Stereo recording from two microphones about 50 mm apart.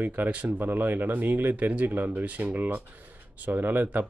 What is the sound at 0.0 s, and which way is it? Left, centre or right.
Speech, right.